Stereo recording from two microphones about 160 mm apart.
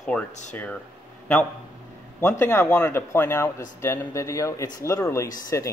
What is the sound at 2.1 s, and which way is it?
Speech, 15° left (ahead or behind).